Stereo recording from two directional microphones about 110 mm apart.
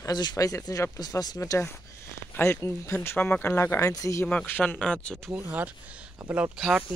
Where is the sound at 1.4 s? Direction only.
25° left (ahead or behind).